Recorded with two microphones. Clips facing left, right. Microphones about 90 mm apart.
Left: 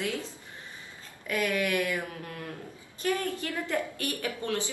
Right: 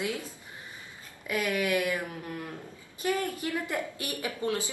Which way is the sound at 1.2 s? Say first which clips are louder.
Even; 15° right (ahead or behind).